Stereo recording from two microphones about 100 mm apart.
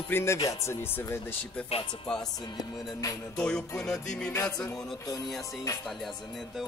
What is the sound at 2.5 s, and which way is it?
Music, 35° left (ahead or behind).